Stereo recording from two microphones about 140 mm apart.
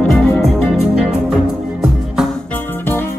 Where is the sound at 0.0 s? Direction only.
5° left (ahead or behind).